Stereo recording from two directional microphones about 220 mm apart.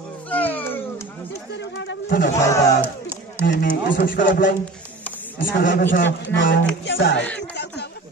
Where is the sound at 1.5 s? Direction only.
50° left (ahead or behind).